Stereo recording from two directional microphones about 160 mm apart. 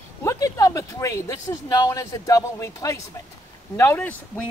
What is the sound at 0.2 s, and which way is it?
Speech, 20° left (ahead or behind).